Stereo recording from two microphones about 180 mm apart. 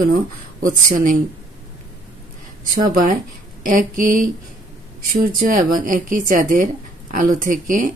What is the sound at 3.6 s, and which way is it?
Speech, 50° right (ahead or behind).